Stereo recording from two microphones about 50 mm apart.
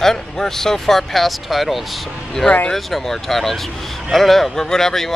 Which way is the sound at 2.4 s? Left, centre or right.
Centre.